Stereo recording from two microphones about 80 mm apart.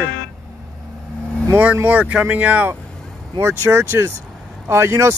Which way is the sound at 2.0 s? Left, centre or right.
Centre.